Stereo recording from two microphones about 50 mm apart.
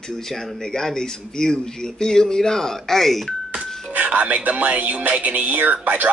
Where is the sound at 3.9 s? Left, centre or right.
Right.